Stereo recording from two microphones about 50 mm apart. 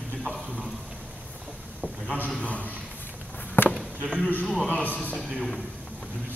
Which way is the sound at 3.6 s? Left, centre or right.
Left.